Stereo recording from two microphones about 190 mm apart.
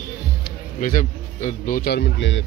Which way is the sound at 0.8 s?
45° left (ahead or behind).